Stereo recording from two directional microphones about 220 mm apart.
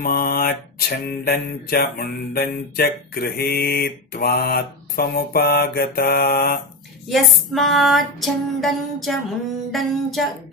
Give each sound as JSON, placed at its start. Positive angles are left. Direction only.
{"t": 0.0, "sound": "mantra", "side_deg": 40}
{"t": 7.1, "sound": "female singing", "side_deg": 0}
{"t": 9.7, "sound": "music", "side_deg": 0}